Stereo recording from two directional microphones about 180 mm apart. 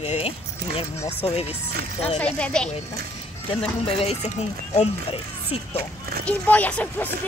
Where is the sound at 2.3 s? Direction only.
5° left (ahead or behind).